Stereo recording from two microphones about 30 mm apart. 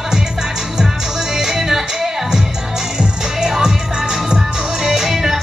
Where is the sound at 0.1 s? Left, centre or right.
Centre.